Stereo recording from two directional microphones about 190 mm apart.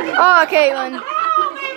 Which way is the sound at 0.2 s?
10° right (ahead or behind).